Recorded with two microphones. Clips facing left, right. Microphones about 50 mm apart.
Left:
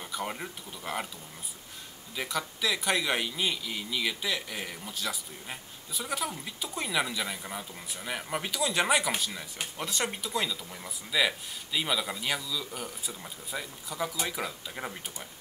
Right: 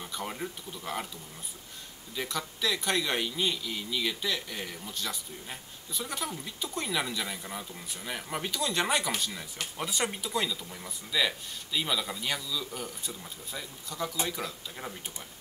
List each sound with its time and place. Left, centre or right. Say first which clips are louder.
0.0 s speech: left 1 dB; centre
2.1 s a man's voice: left 1 dB; centre